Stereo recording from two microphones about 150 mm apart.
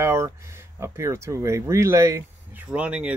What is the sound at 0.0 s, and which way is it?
Speech, 20° right (ahead or behind).